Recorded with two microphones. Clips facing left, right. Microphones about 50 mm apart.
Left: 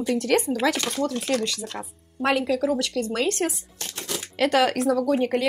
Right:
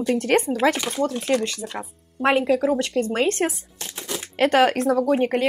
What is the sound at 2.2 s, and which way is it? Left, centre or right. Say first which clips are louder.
Speech: right 3 dB; right.